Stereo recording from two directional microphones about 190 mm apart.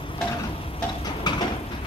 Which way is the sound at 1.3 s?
20° left (ahead or behind).